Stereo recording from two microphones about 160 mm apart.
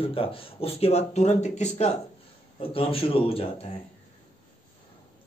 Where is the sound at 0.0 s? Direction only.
35° left (ahead or behind).